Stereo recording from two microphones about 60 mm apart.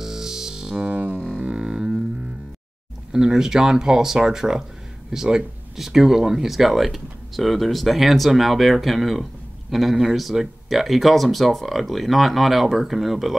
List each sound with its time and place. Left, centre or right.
0.0 s music: centre
0.8 s music: right
1.4 s music: centre
3.1 s speech: centre